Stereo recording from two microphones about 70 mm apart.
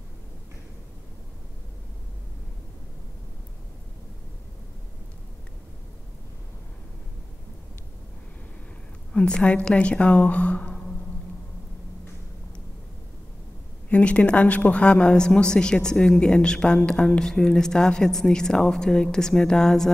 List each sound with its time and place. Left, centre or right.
9.1 s a woman's voice: centre
13.8 s a woman's voice: centre